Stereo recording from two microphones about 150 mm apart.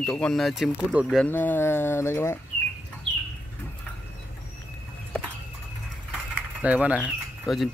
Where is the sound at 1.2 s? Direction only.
15° left (ahead or behind).